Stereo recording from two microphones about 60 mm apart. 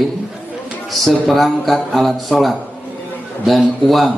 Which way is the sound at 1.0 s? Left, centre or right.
Centre.